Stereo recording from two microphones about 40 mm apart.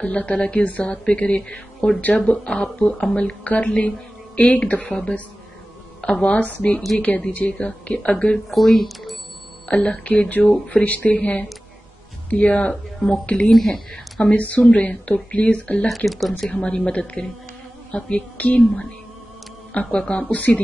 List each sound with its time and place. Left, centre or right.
0.0 s speech: left
2.3 s speech: centre; by 4.9 s left
5.9 s a woman's voice: left
6.3 s speech: left
8.5 s speech: centre
9.7 s speech: left
10.7 s speech: left
16.1 s speech: centre
16.4 s speech: left